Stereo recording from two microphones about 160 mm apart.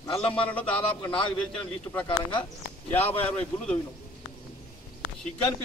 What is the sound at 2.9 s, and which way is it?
Speech, 10° left (ahead or behind).